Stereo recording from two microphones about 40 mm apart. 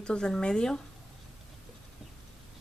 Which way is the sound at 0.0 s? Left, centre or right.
Left.